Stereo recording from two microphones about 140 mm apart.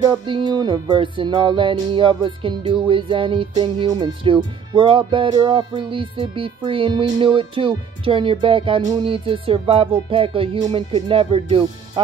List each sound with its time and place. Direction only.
0.0 s music: 30° right (ahead or behind)